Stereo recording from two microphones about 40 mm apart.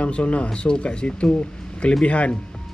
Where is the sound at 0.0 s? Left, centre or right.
Left.